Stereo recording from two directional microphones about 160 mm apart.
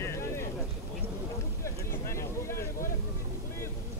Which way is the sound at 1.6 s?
15° left (ahead or behind).